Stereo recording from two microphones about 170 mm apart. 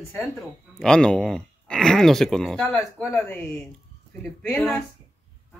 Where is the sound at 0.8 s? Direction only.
5° left (ahead or behind).